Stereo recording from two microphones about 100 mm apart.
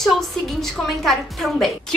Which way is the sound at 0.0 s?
Centre (ahead or behind).